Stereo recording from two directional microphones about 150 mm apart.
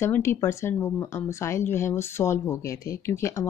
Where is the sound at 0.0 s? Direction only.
15° left (ahead or behind).